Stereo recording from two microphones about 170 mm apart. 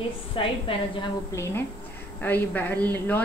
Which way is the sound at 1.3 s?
15° left (ahead or behind).